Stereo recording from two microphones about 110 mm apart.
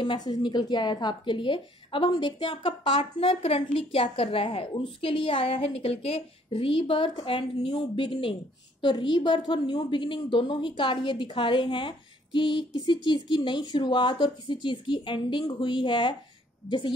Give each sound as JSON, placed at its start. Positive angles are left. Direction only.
{"t": 0.0, "sound": "speech", "side_deg": 45}